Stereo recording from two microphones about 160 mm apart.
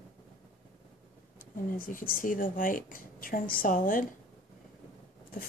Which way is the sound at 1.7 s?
60° left (ahead or behind).